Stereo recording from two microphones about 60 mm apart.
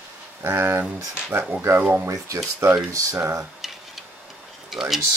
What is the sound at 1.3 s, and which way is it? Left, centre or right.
Speech, right.